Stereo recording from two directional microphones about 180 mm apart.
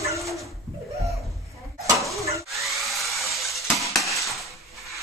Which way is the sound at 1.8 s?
Centre (ahead or behind).